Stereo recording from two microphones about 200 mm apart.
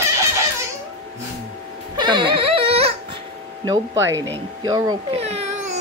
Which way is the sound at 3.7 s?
15° right (ahead or behind).